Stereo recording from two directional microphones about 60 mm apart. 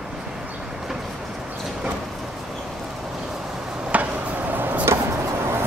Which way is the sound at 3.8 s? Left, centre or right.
Right.